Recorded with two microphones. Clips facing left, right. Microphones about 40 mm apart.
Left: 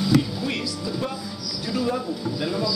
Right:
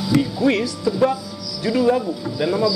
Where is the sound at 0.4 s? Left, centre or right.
Right.